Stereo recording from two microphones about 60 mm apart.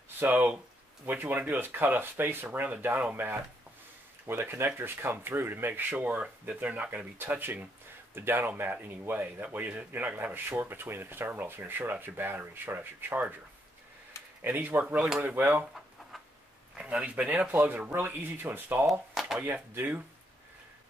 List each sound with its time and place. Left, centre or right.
0.2 s speech: right
2.4 s speech: right
5.7 s speech: right
14.4 s speech: right
15.0 s speech: centre
15.2 s speech: right
16.7 s a sound: centre
17.0 s speech: right
18.9 s speech: centre
19.4 s speech: right